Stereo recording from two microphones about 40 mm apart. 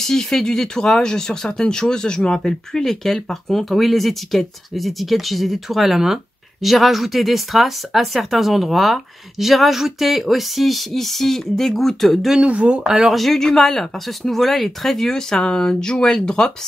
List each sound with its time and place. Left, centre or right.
0.0 s speech: centre
12.4 s speech: right
12.9 s speech: centre
13.2 s speech: centre